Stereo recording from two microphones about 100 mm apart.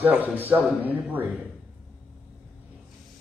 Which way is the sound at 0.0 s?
15° right (ahead or behind).